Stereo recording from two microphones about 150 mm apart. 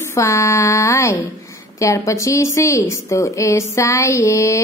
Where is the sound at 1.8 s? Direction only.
20° left (ahead or behind).